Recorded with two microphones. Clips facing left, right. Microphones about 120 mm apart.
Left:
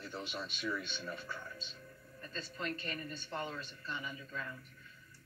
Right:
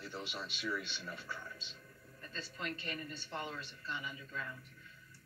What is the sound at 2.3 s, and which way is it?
A man's voice, 5° right (ahead or behind).